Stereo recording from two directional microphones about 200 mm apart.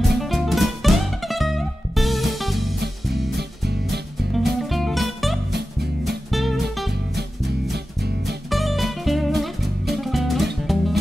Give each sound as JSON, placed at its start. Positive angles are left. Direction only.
{"t": 0.0, "sound": "music", "side_deg": 0}
{"t": 4.3, "sound": "music", "side_deg": 0}
{"t": 7.7, "sound": "music", "side_deg": -55}
{"t": 8.5, "sound": "music", "side_deg": 0}